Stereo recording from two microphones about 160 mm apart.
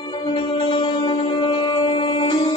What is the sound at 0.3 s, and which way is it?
Music, 30° left (ahead or behind).